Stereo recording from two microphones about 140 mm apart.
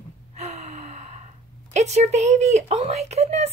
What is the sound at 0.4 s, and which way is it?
Gasp, 55° right (ahead or behind).